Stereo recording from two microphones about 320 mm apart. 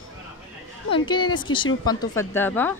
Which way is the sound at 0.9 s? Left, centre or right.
Centre.